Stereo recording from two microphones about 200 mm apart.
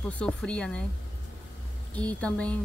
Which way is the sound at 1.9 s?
5° left (ahead or behind).